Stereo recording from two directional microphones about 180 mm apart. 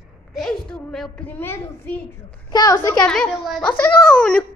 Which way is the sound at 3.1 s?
Centre (ahead or behind).